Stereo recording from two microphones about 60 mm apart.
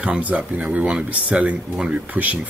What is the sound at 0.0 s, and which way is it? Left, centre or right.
Speech, right.